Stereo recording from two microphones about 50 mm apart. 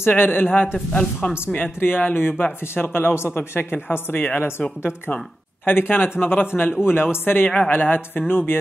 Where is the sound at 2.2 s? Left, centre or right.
Left.